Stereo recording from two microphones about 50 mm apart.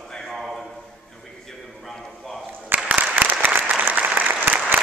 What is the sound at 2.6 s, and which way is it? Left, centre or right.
Applause, right.